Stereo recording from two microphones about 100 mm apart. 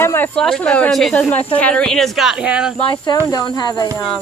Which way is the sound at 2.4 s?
10° right (ahead or behind).